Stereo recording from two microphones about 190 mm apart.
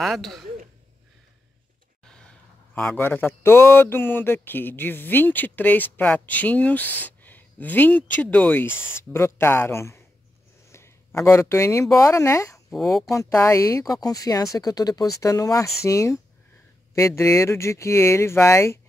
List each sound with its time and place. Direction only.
0.0 s a man's voice: centre (ahead or behind)
2.7 s speech: 10° left (ahead or behind)